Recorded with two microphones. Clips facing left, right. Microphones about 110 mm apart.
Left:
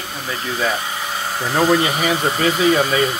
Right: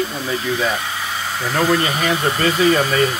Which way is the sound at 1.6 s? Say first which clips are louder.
Left 2 dB; 10° left (ahead or behind).